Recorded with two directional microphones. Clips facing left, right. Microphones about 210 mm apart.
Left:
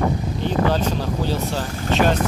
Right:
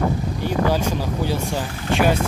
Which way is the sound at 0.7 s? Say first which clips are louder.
Even; 10° right (ahead or behind).